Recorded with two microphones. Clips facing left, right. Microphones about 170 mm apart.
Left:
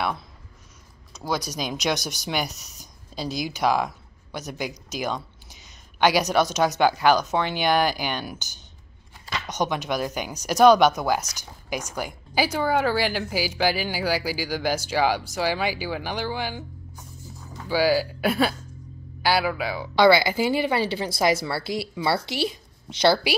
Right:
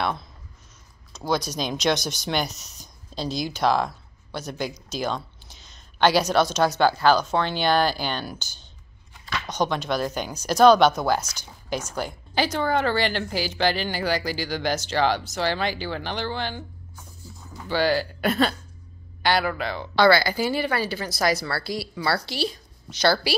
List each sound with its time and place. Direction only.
1.1 s speech: 10° left (ahead or behind)
9.5 s speech: 15° left (ahead or behind)
20.0 s a woman's voice: 20° left (ahead or behind)